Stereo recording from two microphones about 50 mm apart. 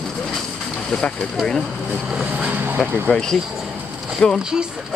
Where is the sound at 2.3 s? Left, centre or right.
Right.